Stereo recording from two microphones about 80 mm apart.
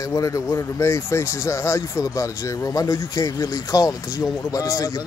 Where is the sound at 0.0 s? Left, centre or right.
Left.